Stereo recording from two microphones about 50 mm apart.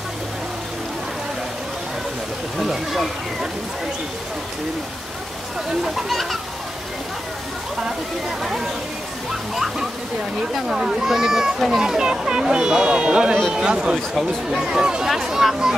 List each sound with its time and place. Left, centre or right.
2.6 s speech: centre
9.3 s speech: centre